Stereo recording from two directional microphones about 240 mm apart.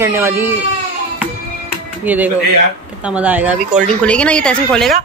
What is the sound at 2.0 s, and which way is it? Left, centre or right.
A woman's voice, centre.